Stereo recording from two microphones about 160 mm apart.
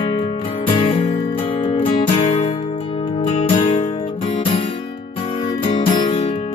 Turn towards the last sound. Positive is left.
turn(degrees=30)  # may be behind; listen again after turning